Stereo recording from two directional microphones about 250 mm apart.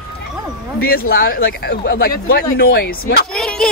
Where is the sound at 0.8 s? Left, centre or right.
Left.